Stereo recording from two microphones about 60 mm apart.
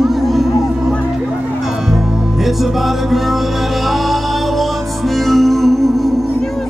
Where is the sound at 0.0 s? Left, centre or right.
Centre.